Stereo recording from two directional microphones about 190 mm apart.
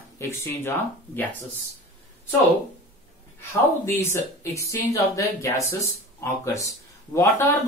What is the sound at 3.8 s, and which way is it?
Speech, 10° left (ahead or behind).